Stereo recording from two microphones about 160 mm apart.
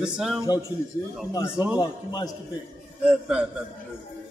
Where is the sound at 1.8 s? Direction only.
25° left (ahead or behind).